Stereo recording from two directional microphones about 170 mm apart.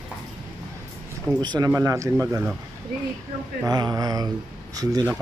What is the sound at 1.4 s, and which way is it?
Speech, 25° right (ahead or behind).